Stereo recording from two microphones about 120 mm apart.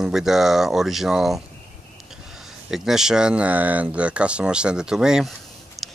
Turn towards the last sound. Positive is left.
turn(degrees=-5)  # may be behind; listen again after turning